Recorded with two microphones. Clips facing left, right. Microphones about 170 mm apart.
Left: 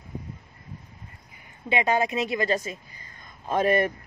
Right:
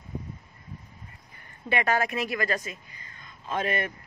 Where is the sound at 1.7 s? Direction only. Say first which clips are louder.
Left 2 dB; 20° left (ahead or behind).